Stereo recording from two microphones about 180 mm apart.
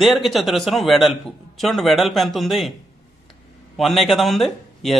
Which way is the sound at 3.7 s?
Centre (ahead or behind).